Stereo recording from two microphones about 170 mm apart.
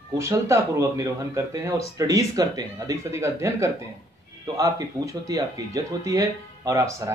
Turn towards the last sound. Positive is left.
turn(degrees=-20)  # may be behind; listen again after turning